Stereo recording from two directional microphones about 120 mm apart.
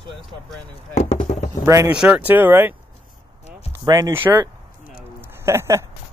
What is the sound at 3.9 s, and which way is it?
Speech, 30° right (ahead or behind).